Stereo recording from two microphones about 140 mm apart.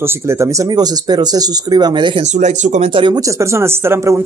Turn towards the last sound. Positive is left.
turn(degrees=-20)  # may be behind; listen again after turning